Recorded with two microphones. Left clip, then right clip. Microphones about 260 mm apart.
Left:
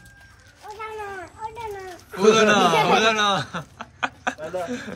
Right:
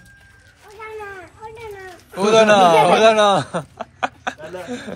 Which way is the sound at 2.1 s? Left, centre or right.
Centre.